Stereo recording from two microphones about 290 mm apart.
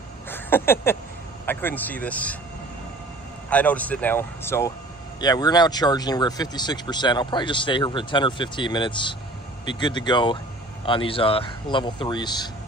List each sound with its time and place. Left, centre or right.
0.3 s a sound: centre
1.4 s speech: centre
3.4 s speech: centre